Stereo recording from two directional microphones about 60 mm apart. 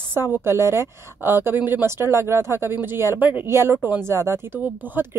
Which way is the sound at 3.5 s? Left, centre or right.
Right.